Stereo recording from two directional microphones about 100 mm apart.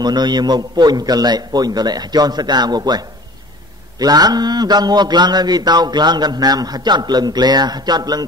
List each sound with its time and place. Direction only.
0.0 s a man's voice: 45° right (ahead or behind)